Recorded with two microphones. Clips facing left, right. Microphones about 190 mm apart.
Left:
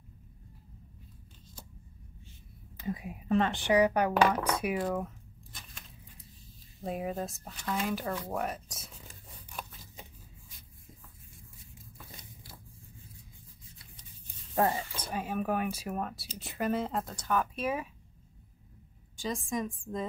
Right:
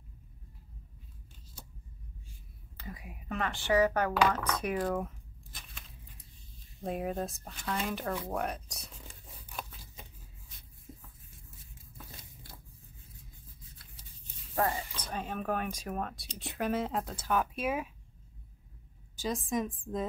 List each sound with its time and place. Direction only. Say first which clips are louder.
2.8 s speech: left 9 dB; 25° left (ahead or behind)
4.3 s tearing: left 2 dB; 10° left (ahead or behind)
6.8 s speech: even; centre (ahead or behind)
14.5 s speech: left 3 dB; 20° left (ahead or behind); by 17.8 s 5° right (ahead or behind)
19.1 s speech: right 1 dB; centre (ahead or behind)